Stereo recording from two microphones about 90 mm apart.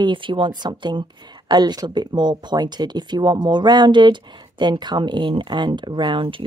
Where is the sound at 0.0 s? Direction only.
65° right (ahead or behind).